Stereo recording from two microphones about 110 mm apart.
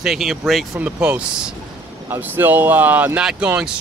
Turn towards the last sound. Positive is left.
turn(degrees=-10)  # may be behind; listen again after turning